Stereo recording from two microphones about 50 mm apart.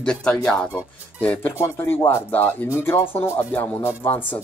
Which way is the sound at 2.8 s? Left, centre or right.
Left.